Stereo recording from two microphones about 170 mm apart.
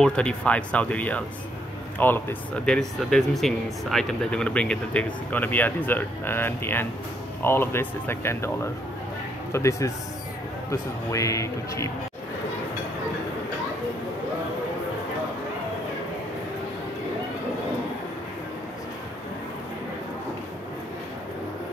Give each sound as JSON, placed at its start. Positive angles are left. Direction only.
{"t": 0.0, "sound": "speech", "side_deg": 5}
{"t": 9.5, "sound": "speech", "side_deg": 15}